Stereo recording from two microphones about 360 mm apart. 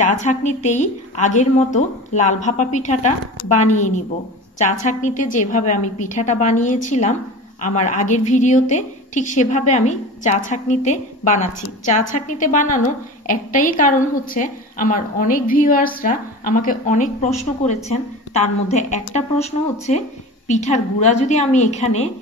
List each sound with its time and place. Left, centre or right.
0.0 s a woman's voice: centre